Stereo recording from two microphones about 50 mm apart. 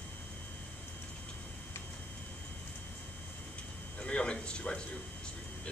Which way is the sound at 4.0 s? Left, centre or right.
Left.